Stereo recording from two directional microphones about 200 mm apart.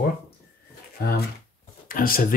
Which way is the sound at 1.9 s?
45° left (ahead or behind).